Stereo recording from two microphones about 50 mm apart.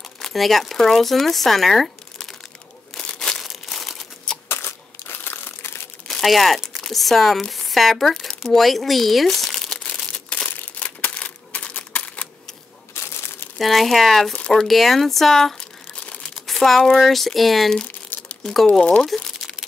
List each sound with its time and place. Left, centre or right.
0.2 s speech: centre
3.1 s crumpling: centre
3.3 s crumpling: centre
4.5 s crumpling: left
6.0 s speech: centre
9.8 s crumpling: left
11.1 s typewriter: left
12.9 s a sound: left
13.6 s speech: centre
18.7 s speech: left
19.0 s crumpling: centre